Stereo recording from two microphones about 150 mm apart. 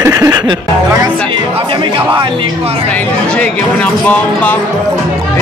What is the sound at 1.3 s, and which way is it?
Speech, 35° right (ahead or behind).